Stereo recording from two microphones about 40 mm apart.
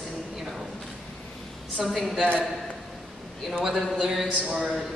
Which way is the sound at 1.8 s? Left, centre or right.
Centre.